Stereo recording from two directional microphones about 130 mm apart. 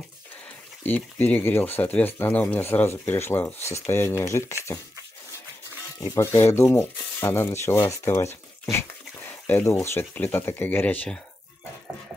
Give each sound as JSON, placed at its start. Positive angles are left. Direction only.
{"t": 0.8, "sound": "speech", "side_deg": 15}
{"t": 6.0, "sound": "speech", "side_deg": 20}